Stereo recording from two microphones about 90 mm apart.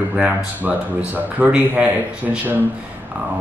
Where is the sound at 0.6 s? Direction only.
20° right (ahead or behind).